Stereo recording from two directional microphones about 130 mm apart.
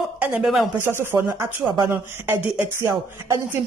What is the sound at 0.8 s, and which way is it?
Speech, 20° right (ahead or behind).